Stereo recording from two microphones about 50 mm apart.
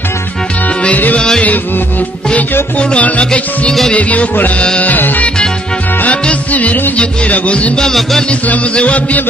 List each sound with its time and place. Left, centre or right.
0.8 s music: left
6.5 s music: left
7.8 s music: centre
8.3 s music: left